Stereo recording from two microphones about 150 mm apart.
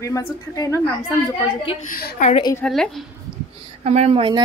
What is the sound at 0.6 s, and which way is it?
Speech, 20° left (ahead or behind).